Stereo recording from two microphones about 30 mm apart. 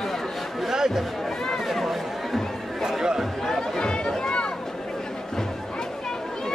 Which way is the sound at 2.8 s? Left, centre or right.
Centre.